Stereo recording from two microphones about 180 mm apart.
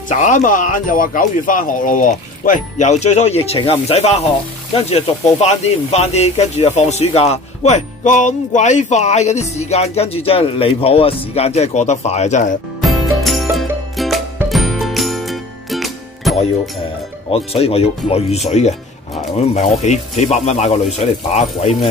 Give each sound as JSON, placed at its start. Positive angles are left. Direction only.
{"t": 0.1, "sound": "speech", "side_deg": 45}
{"t": 12.8, "sound": "music", "side_deg": 0}
{"t": 17.3, "sound": "speech", "side_deg": 35}